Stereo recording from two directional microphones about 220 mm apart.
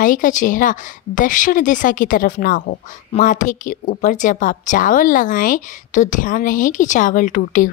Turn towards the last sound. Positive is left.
turn(degrees=35)  # may be behind; listen again after turning